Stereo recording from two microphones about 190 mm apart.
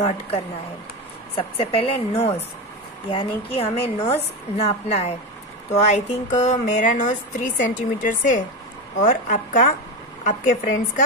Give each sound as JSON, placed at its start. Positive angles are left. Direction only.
{"t": 1.3, "sound": "a woman's voice", "side_deg": 30}